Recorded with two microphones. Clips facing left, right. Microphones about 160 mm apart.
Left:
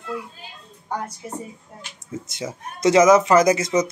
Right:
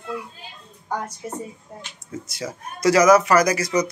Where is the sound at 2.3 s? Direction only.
20° left (ahead or behind).